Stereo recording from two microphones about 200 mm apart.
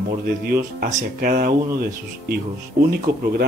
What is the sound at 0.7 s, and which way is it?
Speech, 45° right (ahead or behind).